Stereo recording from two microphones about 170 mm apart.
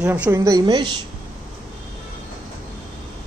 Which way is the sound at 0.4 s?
20° right (ahead or behind).